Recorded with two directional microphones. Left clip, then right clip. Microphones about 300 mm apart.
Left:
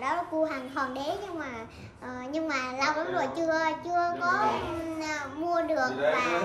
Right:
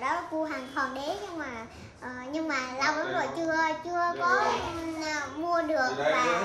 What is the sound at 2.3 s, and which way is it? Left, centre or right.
A child's voice, centre.